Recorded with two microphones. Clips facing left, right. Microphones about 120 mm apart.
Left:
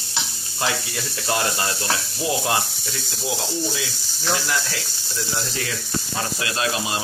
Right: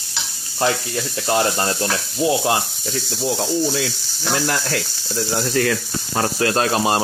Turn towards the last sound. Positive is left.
turn(degrees=-45)  # may be behind; listen again after turning